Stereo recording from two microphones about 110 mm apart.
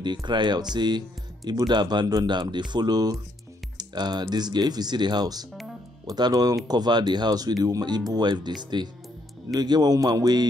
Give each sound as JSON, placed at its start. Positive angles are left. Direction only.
{"t": 0.0, "sound": "speech", "side_deg": -45}